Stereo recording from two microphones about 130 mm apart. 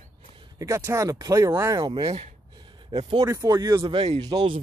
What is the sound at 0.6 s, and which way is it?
Speech, 20° right (ahead or behind).